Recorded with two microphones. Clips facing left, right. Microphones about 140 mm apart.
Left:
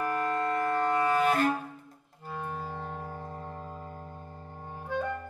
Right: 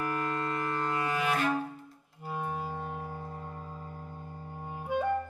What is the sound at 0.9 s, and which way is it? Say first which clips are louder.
Clarinet: left 5 dB; 50° left (ahead or behind).